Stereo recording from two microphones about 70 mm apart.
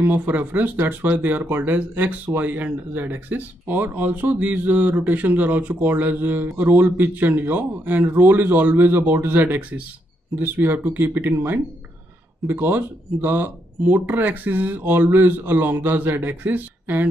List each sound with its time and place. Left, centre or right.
0.0 s speech: right